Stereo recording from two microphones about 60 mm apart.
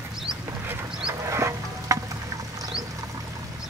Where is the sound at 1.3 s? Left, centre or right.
Right.